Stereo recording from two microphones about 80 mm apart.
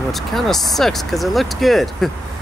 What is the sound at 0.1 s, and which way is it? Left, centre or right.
Speech, centre.